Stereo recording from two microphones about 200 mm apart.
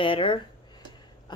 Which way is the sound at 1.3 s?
25° left (ahead or behind).